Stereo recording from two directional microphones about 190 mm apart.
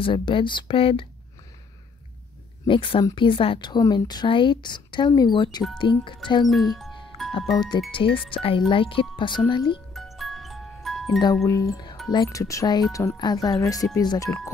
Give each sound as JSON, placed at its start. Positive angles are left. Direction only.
{"t": 0.0, "sound": "speech", "side_deg": 25}
{"t": 2.6, "sound": "speech", "side_deg": 25}
{"t": 6.4, "sound": "speech", "side_deg": 0}
{"t": 7.5, "sound": "speech", "side_deg": 20}
{"t": 9.9, "sound": "music", "side_deg": 0}
{"t": 11.1, "sound": "speech", "side_deg": 20}